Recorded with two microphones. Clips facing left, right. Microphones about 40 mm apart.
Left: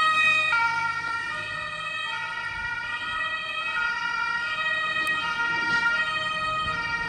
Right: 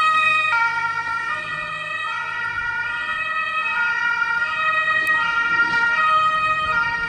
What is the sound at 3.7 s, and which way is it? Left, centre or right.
Emergency vehicle, right.